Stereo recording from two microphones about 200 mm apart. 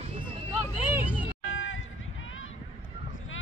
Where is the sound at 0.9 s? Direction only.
5° right (ahead or behind).